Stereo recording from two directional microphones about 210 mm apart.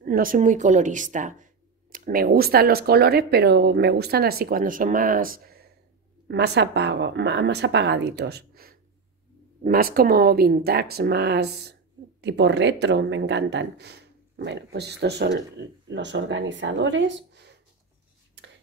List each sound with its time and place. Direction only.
0.0 s speech: 40° right (ahead or behind)